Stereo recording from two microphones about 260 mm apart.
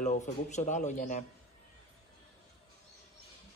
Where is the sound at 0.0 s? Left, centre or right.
Left.